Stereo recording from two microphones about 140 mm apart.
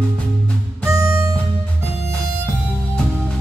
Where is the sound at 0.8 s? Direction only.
20° right (ahead or behind).